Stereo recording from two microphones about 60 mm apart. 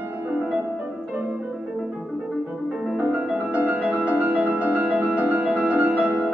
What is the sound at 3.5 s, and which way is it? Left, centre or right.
Music, centre.